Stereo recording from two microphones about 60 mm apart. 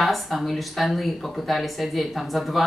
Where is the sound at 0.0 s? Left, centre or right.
Centre.